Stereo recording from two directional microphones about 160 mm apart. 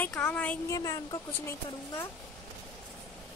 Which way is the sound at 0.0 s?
10° left (ahead or behind).